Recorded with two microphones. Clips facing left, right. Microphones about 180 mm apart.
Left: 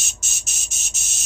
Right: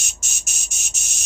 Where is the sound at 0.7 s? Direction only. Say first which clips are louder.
Even; 15° right (ahead or behind).